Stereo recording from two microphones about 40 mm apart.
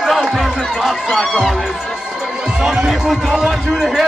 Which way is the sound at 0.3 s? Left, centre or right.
Centre.